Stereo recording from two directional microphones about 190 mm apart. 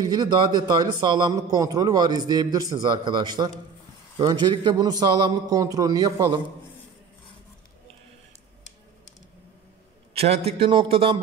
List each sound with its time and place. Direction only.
0.0 s a man's voice: 20° right (ahead or behind)
10.1 s a man's voice: 35° right (ahead or behind)